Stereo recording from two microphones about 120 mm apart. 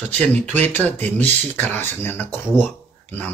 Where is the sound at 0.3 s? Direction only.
15° left (ahead or behind).